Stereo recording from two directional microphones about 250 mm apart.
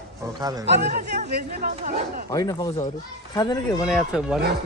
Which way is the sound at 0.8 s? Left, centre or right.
Right.